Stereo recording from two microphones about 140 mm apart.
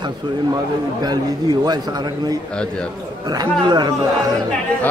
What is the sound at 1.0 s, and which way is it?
A man's voice, 30° right (ahead or behind).